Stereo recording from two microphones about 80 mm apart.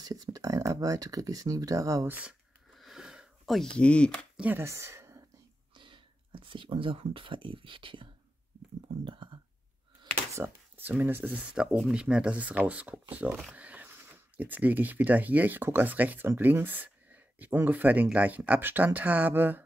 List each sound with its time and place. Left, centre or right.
0.0 s speech: right
2.0 s speech: right
2.7 s a sound: centre
3.7 s speech: centre
4.6 s speech: right
5.8 s speech: right
9.0 s a sound: right
10.4 s speech: right
11.3 s speech: centre